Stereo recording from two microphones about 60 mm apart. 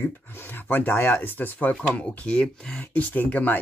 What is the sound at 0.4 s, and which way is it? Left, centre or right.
Speech, left.